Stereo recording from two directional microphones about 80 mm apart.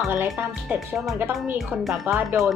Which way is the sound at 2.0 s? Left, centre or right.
Right.